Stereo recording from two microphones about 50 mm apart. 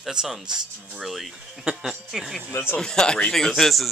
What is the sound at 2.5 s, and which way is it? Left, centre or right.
Speech, left.